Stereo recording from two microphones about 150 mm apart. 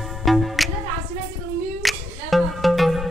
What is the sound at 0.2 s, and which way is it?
Music, centre (ahead or behind).